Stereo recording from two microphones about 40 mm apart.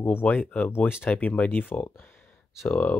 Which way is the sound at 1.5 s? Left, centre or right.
Left.